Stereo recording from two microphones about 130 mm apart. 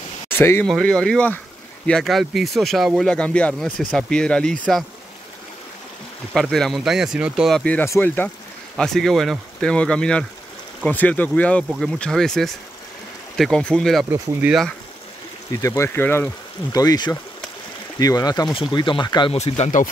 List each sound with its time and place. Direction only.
0.3 s speech: 15° left (ahead or behind)
0.7 s speech: 5° left (ahead or behind)
6.5 s speech: centre (ahead or behind)
7.6 s speech: 10° left (ahead or behind)
8.7 s speech: 5° left (ahead or behind)
15.5 s speech: 25° left (ahead or behind)
16.7 s speech: 30° left (ahead or behind)
18.5 s speech: 40° left (ahead or behind)
19.3 s speech: 55° left (ahead or behind)